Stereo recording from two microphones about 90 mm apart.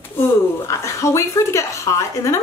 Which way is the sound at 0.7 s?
35° left (ahead or behind).